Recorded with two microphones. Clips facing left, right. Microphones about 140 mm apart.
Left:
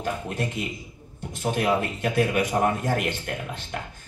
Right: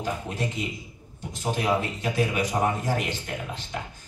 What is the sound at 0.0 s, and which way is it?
A man's voice, 55° left (ahead or behind).